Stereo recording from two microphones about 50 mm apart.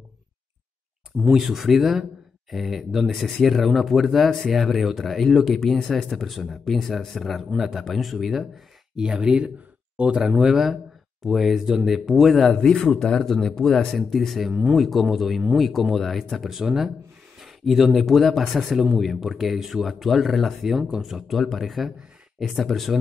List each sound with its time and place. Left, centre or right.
1.2 s speech: centre
6.0 s speech: centre
8.9 s speech: centre
12.5 s speech: centre